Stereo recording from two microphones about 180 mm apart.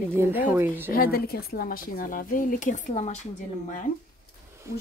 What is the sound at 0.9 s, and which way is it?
A woman's voice, 55° left (ahead or behind).